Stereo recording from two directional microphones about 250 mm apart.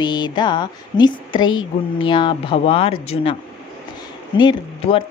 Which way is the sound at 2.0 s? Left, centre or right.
Centre.